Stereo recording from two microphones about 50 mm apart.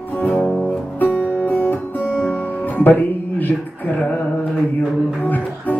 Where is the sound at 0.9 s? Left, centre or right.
Left.